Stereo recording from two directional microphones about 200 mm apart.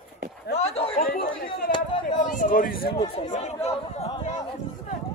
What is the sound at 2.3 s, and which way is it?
Speech, 40° left (ahead or behind).